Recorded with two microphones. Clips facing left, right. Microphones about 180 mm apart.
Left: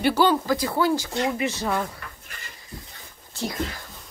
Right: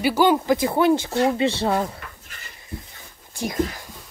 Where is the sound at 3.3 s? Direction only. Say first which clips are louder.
Right 2 dB; 15° right (ahead or behind).